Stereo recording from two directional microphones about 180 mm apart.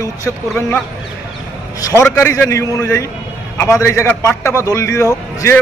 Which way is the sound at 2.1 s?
15° left (ahead or behind).